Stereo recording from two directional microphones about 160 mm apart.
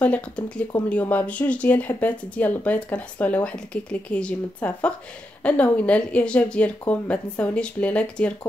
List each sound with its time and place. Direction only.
0.0 s speech: 10° left (ahead or behind)